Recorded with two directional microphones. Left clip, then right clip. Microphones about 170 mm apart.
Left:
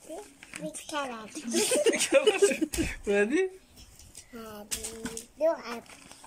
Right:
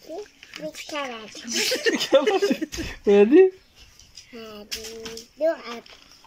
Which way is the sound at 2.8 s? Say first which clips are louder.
Right 12 dB; 35° right (ahead or behind).